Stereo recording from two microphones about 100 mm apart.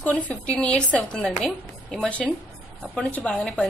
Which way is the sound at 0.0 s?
15° left (ahead or behind).